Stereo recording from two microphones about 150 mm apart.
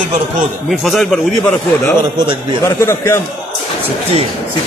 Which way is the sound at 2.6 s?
20° left (ahead or behind).